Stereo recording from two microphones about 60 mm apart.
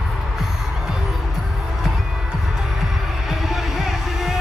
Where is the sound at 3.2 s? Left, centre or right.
Centre.